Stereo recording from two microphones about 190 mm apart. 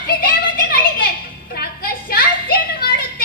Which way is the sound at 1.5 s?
55° left (ahead or behind).